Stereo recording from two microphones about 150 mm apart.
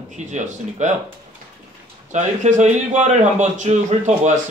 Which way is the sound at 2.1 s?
55° right (ahead or behind).